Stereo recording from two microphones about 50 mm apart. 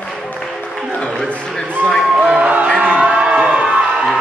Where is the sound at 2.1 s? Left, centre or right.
Right.